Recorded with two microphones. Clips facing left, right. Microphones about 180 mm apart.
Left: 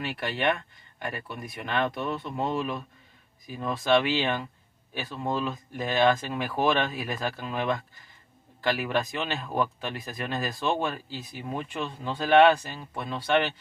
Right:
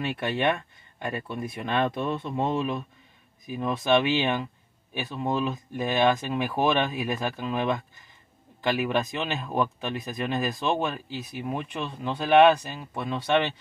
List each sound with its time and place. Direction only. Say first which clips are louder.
0.0 s speech: right 2 dB; 25° right (ahead or behind)